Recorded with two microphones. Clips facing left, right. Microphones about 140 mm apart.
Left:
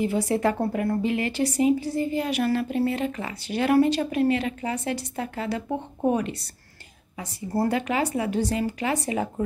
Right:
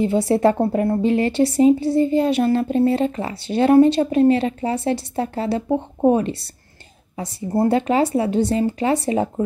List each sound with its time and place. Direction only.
0.0 s a woman's voice: 30° right (ahead or behind)